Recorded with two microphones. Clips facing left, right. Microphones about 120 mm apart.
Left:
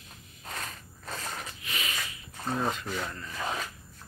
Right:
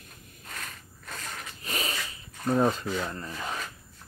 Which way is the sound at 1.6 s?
40° right (ahead or behind).